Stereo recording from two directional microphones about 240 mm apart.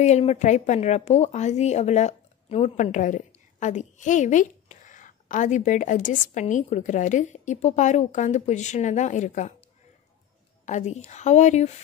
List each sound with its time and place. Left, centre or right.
0.0 s a woman's voice: left
10.6 s a woman's voice: left